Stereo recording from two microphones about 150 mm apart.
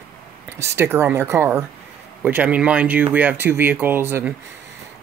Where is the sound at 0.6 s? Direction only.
15° right (ahead or behind).